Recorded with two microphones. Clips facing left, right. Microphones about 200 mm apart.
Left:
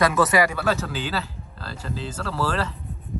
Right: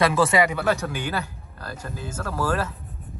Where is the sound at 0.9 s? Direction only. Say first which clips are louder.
Even; 90° left.